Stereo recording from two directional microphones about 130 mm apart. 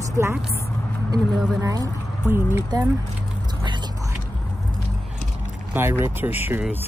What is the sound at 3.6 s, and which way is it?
Vehicle, 35° right (ahead or behind).